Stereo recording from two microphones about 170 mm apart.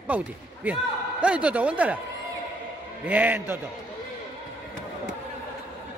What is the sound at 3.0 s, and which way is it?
Speech, 10° right (ahead or behind).